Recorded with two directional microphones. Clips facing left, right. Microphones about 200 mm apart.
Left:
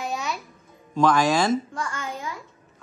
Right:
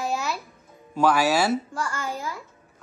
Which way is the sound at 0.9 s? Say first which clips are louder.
Left 1 dB; 10° right (ahead or behind).